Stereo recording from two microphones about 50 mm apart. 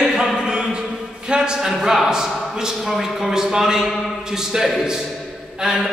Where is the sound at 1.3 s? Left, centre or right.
Centre.